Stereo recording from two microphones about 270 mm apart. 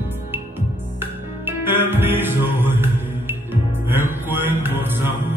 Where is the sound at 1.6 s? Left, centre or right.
Centre.